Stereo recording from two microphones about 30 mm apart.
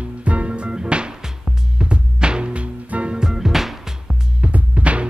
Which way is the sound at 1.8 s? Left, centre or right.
Right.